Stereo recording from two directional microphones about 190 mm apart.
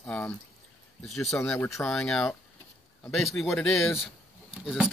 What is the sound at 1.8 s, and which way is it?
Speech, centre (ahead or behind).